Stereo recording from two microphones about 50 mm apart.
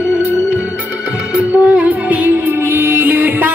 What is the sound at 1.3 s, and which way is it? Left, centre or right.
Music, right.